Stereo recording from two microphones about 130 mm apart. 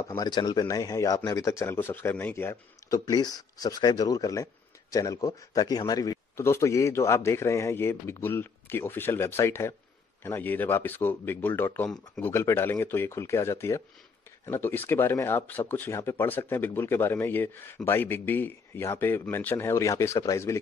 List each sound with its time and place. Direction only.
0.2 s a man's voice: 35° left (ahead or behind)
3.1 s a man's voice: 30° left (ahead or behind)